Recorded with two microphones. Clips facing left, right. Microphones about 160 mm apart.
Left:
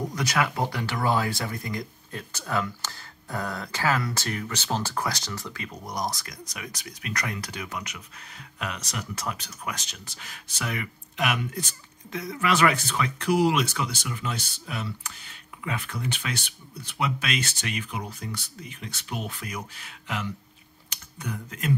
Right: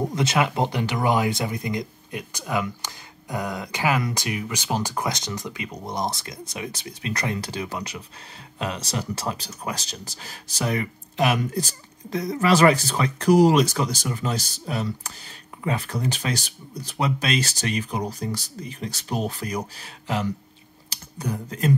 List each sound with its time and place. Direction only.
0.0 s speech: 25° right (ahead or behind)